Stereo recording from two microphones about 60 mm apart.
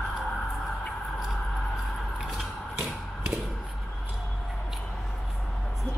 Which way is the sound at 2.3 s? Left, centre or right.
Centre.